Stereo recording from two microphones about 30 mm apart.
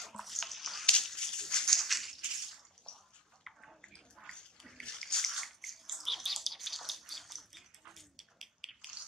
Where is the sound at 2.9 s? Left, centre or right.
Left.